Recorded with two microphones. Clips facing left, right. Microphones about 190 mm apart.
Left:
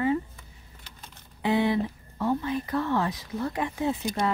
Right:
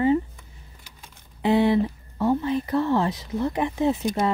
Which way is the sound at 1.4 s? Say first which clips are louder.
Right 5 dB; 30° right (ahead or behind).